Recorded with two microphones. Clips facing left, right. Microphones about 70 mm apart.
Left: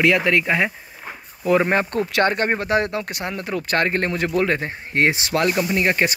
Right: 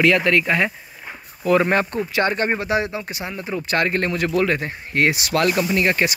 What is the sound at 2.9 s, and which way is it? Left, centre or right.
Speech, left.